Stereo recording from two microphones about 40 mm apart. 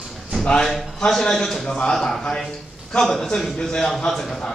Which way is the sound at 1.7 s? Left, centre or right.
Centre.